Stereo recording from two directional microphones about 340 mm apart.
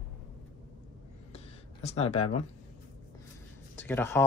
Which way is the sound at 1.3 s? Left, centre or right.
Centre.